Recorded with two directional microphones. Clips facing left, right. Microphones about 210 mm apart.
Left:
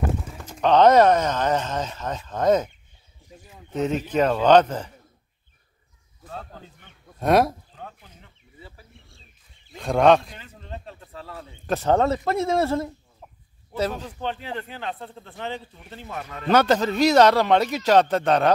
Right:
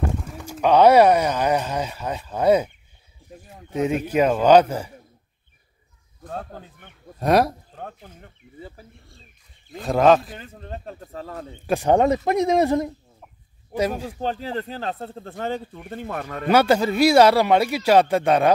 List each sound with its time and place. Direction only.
0.4 s speech: 10° right (ahead or behind)
3.7 s speech: 10° right (ahead or behind)
6.2 s speech: 55° right (ahead or behind)
7.2 s speech: centre (ahead or behind)
7.7 s a sound: 50° right (ahead or behind)
9.8 s speech: centre (ahead or behind)
10.3 s speech: 45° right (ahead or behind)
11.6 s speech: 15° right (ahead or behind)
14.2 s speech: 40° right (ahead or behind)
16.4 s speech: 10° right (ahead or behind)